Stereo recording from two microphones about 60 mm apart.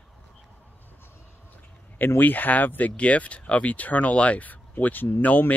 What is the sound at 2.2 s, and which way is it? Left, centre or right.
Speech, left.